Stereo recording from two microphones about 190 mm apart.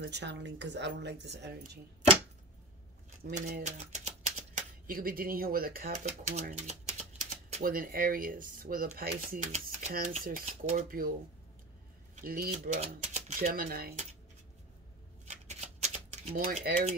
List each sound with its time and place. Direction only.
0.0 s speech: 60° right (ahead or behind)
3.3 s speech: 40° right (ahead or behind)
4.6 s speech: 50° right (ahead or behind)
6.0 s speech: 35° right (ahead or behind)
12.2 s speech: 50° right (ahead or behind)
15.2 s a sound: 35° right (ahead or behind)
16.4 s speech: 50° right (ahead or behind)